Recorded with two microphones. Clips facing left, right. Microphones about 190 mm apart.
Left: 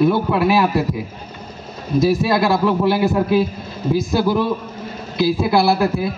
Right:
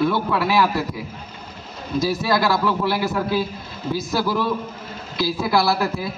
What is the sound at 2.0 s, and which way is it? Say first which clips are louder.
A man's voice: left 4 dB; 25° left (ahead or behind).